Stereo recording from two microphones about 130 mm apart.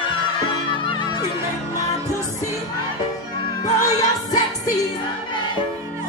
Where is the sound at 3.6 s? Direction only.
30° left (ahead or behind).